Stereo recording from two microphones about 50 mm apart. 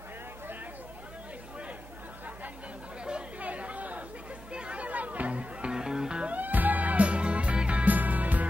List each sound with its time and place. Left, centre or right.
3.1 s chatter: right
4.5 s music: right
5.7 s music: centre
6.3 s music: right